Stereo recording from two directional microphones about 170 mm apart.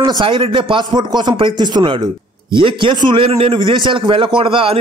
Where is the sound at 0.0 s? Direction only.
30° right (ahead or behind).